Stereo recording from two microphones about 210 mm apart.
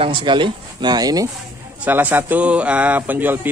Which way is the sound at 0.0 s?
25° right (ahead or behind).